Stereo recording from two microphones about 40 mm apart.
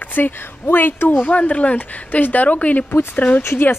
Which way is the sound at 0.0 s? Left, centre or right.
Left.